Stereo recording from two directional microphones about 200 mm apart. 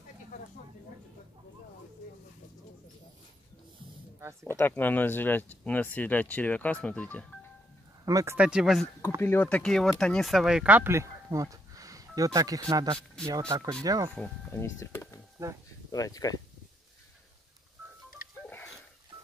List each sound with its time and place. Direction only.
4.2 s speech: 15° right (ahead or behind)
4.5 s speech: 10° left (ahead or behind)
8.0 s speech: 15° right (ahead or behind)
8.4 s speech: 5° right (ahead or behind)
9.2 s speech: 10° left (ahead or behind); by 14.1 s 20° right (ahead or behind)
14.1 s speech: 5° left (ahead or behind)
15.4 s speech: 15° right (ahead or behind)
15.9 s speech: 20° left (ahead or behind)